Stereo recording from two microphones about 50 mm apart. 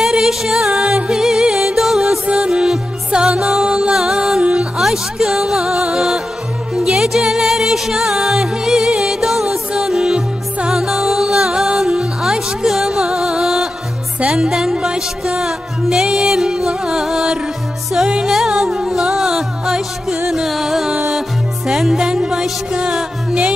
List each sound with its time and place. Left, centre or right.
0.0 s music: centre
4.4 s music: right
4.7 s music: centre
18.2 s music: centre